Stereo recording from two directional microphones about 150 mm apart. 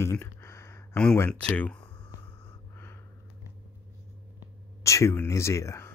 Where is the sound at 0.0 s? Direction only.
20° left (ahead or behind).